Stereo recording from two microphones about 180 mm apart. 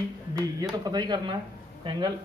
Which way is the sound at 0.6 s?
20° right (ahead or behind).